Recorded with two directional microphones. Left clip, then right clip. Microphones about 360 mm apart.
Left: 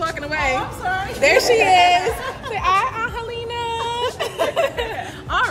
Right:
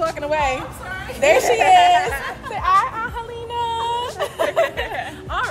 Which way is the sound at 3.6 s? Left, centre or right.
Centre.